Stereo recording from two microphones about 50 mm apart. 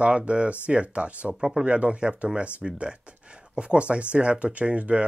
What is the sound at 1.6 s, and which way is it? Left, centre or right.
Speech, right.